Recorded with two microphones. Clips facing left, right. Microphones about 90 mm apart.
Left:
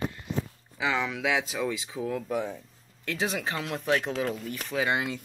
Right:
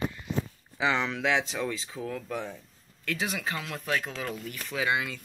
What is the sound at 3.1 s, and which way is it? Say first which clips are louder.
Speech: left 2 dB; 25° left (ahead or behind).